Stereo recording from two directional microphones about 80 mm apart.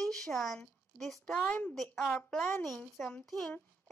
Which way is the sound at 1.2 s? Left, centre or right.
Centre.